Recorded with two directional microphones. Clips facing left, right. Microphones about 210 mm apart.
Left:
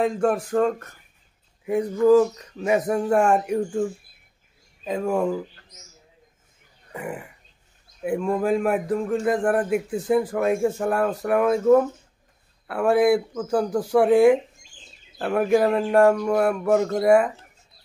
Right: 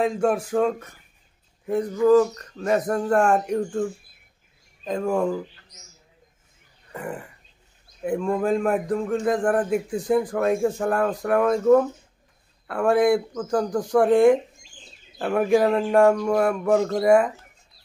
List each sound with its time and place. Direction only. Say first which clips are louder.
0.0 s a man's voice: even; centre (ahead or behind)
2.0 s a man's voice: left 1 dB; 10° left (ahead or behind)
6.9 s a man's voice: even; 5° left (ahead or behind)